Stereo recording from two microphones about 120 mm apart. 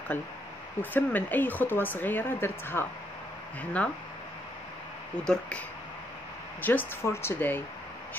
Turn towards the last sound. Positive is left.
turn(degrees=20)  # may be behind; listen again after turning